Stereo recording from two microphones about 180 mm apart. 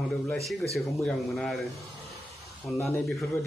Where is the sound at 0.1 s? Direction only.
Centre (ahead or behind).